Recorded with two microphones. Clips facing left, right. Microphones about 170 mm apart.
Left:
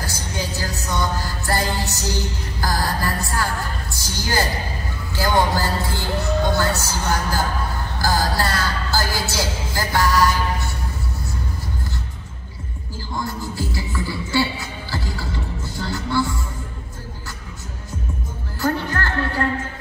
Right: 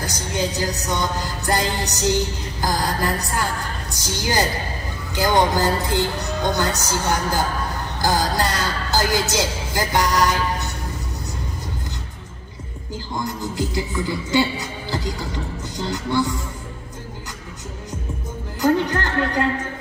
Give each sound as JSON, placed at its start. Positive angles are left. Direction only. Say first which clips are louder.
{"t": 0.0, "sound": "music", "louder": "right 4 dB", "side_deg": -20}
{"t": 2.6, "sound": "a woman's voice", "louder": "right 1 dB", "side_deg": -20}
{"t": 8.0, "sound": "speech", "louder": "right 1 dB", "side_deg": -20}
{"t": 13.1, "sound": "music", "louder": "right 1 dB", "side_deg": -20}
{"t": 15.7, "sound": "a woman's voice", "louder": "right 1 dB", "side_deg": -20}
{"t": 18.6, "sound": "a woman's voice", "louder": "right 4 dB", "side_deg": -15}